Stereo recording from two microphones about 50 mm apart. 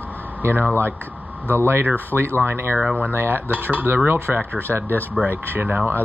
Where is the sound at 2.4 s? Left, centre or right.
Right.